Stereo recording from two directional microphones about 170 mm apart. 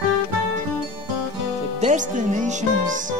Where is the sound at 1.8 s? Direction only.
45° right (ahead or behind).